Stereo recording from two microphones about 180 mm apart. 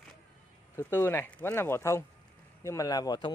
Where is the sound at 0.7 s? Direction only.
10° left (ahead or behind).